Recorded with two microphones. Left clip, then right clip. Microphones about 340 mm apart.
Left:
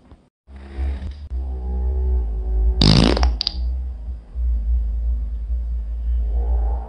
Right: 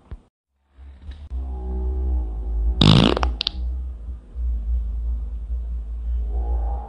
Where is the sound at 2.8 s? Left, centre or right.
Right.